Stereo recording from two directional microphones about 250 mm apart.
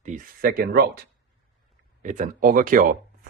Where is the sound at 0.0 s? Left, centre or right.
Right.